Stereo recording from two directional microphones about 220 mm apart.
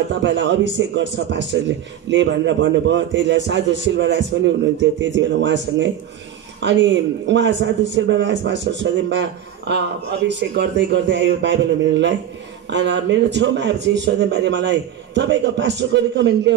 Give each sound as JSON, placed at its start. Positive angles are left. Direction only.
{"t": 0.1, "sound": "a man's voice", "side_deg": -55}